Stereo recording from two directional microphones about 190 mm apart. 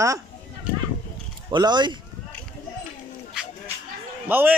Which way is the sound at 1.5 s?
25° right (ahead or behind).